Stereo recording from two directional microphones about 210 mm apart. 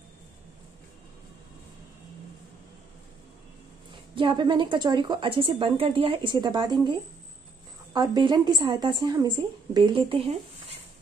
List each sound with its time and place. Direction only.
4.1 s a woman's voice: 20° right (ahead or behind)